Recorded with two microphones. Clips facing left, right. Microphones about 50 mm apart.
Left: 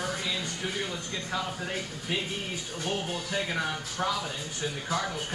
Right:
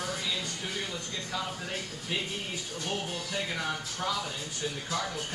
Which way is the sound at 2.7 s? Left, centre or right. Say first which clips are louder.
Left 3 dB; left.